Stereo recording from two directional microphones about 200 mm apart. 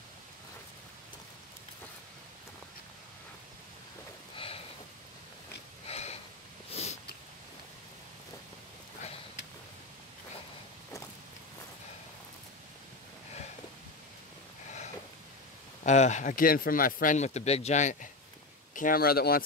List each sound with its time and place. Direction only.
5.9 s a sound: 30° left (ahead or behind)
15.8 s speech: 35° left (ahead or behind)
18.8 s speech: 45° left (ahead or behind)